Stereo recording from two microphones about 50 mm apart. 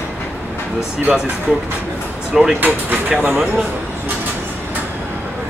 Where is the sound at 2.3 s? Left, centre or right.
Centre.